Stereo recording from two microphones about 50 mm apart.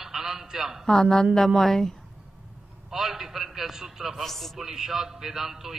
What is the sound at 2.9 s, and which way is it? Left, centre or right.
A man's voice, centre.